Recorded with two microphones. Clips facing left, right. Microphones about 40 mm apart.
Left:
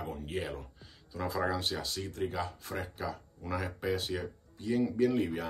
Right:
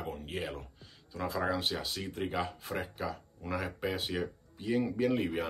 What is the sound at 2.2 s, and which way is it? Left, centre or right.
Speech, right.